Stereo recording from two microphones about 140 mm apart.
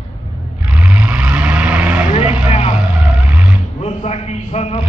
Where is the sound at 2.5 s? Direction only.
55° left (ahead or behind).